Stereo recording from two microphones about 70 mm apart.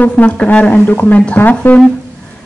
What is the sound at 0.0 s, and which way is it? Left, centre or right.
A woman's voice, centre.